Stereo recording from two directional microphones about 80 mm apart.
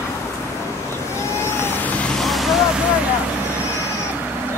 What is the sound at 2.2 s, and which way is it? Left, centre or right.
Vehicle, centre.